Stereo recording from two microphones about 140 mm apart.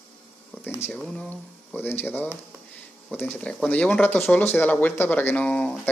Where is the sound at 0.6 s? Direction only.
15° left (ahead or behind).